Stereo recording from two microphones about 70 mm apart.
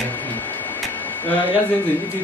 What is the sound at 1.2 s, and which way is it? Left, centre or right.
Speech, left.